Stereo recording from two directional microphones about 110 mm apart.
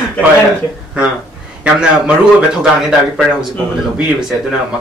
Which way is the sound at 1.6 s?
10° right (ahead or behind).